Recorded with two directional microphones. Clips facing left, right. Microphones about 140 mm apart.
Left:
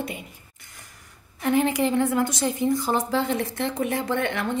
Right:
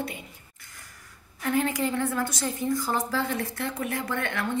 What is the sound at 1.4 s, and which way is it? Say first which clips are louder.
A woman's voice: left 4 dB; 20° left (ahead or behind).